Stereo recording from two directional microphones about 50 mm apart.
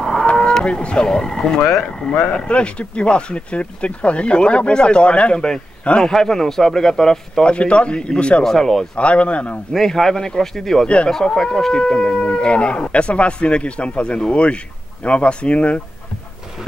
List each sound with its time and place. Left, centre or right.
0.0 s livestock: centre
0.4 s speech: centre
7.4 s speech: left
8.5 s speech: centre
8.9 s speech: left
9.7 s speech: centre; by 15.8 s left